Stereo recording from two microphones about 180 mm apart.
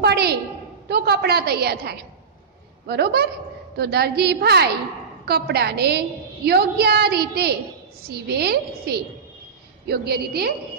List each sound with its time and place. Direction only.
0.0 s a woman's voice: 65° right (ahead or behind)